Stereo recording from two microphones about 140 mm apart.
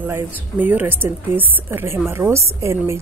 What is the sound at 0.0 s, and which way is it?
A woman's voice, 15° right (ahead or behind).